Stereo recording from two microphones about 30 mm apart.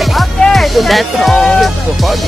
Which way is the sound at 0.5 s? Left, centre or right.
Centre.